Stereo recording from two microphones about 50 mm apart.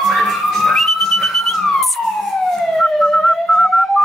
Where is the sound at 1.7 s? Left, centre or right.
Centre.